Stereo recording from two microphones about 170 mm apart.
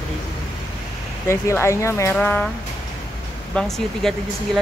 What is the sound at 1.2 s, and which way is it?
Speech, 15° left (ahead or behind).